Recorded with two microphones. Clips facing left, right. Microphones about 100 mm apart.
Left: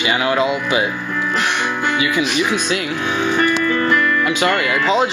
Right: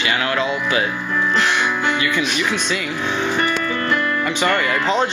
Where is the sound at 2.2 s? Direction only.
10° left (ahead or behind).